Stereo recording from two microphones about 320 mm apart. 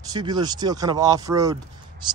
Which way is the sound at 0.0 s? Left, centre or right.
Centre.